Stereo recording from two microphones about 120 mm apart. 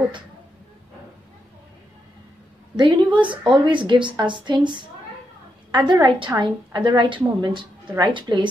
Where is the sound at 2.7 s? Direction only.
40° right (ahead or behind).